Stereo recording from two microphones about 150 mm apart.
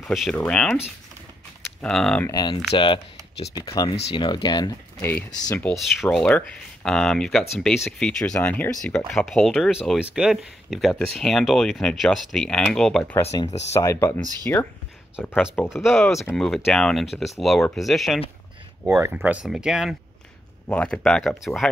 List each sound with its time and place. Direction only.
0.0 s speech: centre (ahead or behind)
1.8 s speech: 5° left (ahead or behind)
2.2 s speech: 25° left (ahead or behind)
2.7 s speech: 35° left (ahead or behind)
3.5 s speech: 25° left (ahead or behind)
5.0 s speech: 10° left (ahead or behind)
13.1 s speech: 15° left (ahead or behind); by 20.0 s 5° right (ahead or behind)
20.6 s speech: 10° left (ahead or behind)